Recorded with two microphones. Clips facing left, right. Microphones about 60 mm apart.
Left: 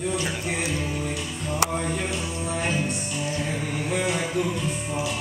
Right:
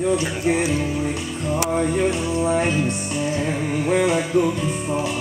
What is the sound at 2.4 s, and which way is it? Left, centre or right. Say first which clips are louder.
Music: right 5 dB; right.